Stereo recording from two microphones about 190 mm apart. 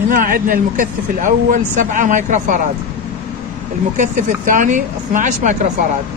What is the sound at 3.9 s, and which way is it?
Speech, 40° right (ahead or behind).